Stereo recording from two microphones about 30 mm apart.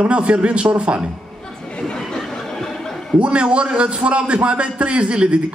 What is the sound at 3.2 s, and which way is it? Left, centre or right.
A man's voice, right.